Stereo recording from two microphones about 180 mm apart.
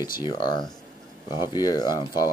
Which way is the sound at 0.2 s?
25° left (ahead or behind).